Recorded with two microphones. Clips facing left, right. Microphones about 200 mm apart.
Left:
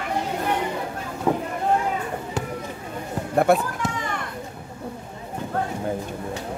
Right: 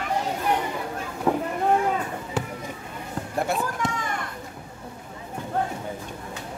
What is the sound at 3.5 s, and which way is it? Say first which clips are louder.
Speech: left 9 dB; 60° left (ahead or behind).